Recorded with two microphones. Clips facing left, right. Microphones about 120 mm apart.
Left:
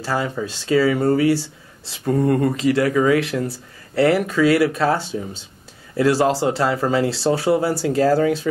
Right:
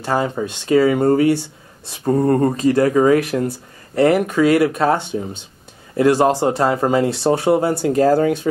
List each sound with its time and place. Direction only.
0.1 s speech: 35° right (ahead or behind)
2.0 s speech: 35° right (ahead or behind)
2.6 s speech: 25° right (ahead or behind)